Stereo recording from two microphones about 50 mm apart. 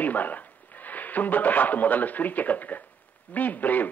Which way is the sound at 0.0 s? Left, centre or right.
Left.